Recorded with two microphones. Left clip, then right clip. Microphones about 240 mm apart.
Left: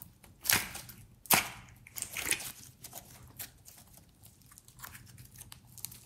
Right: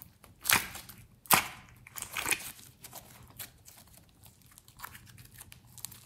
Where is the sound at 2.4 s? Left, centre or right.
Centre.